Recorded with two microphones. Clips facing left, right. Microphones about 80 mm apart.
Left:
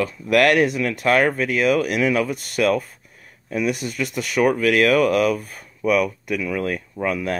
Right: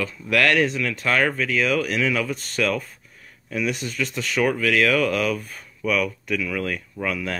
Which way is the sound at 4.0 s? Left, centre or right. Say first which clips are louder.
Left 3 dB; centre.